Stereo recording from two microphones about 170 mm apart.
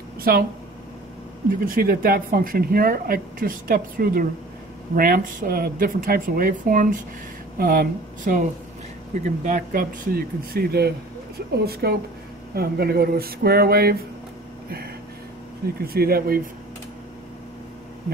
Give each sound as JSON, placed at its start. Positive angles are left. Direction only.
{"t": 0.2, "sound": "speech", "side_deg": -60}
{"t": 1.7, "sound": "speech", "side_deg": -60}
{"t": 15.8, "sound": "speech", "side_deg": -65}